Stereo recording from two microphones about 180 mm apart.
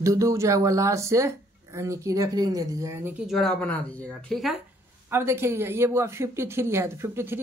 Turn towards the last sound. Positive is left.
turn(degrees=-15)  # may be behind; listen again after turning